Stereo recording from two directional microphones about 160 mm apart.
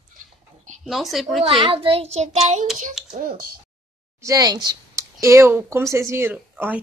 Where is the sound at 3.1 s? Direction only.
60° right (ahead or behind).